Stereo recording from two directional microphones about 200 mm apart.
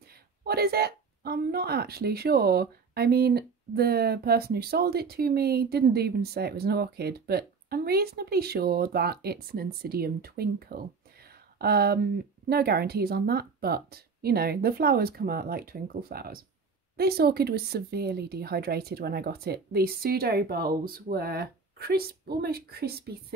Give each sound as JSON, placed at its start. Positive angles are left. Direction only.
{"t": 0.5, "sound": "speech", "side_deg": -50}